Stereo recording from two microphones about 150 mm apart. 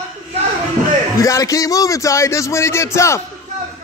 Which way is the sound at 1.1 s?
20° left (ahead or behind).